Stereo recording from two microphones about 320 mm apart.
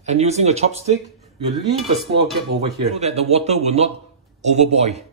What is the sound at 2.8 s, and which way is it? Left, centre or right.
Speech, centre.